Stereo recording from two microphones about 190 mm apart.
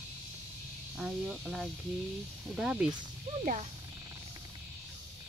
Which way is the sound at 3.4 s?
40° right (ahead or behind).